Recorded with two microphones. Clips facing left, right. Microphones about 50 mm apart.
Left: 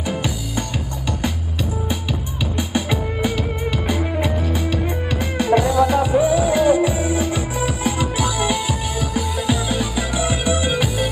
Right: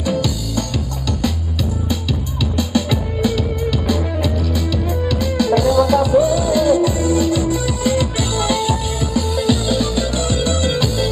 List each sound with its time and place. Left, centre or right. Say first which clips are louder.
0.0 s music: right 4 dB; left
2.5 s music: right 3 dB; left